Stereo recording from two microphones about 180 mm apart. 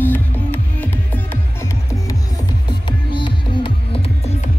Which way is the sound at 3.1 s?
25° left (ahead or behind).